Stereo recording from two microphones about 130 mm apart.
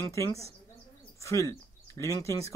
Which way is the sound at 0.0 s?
25° left (ahead or behind).